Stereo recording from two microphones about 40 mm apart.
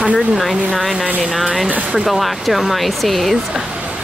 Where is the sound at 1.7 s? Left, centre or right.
Right.